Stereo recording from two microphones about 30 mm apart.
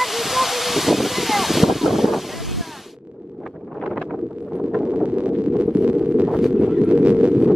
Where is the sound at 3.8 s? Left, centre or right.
Centre.